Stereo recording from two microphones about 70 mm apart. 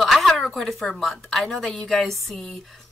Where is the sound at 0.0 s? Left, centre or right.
Centre.